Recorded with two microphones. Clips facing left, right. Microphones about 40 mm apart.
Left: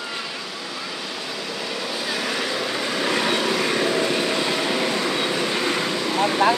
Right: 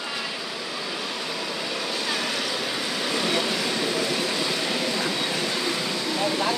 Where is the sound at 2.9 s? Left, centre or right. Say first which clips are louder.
Left 4 dB; left.